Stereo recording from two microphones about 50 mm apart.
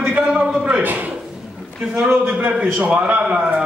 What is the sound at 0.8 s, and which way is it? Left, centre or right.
A man's voice, right.